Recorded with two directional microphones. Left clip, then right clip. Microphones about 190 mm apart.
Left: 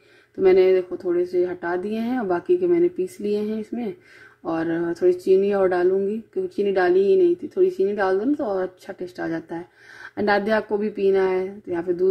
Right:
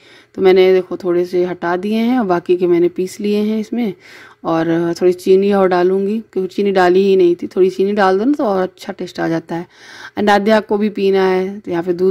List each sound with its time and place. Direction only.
0.4 s speech: 30° right (ahead or behind)